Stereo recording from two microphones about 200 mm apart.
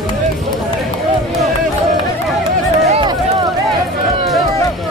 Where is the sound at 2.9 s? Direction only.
25° right (ahead or behind).